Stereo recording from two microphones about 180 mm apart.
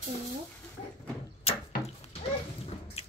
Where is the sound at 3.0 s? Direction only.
35° left (ahead or behind).